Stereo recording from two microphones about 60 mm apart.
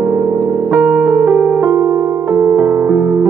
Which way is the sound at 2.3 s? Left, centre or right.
Right.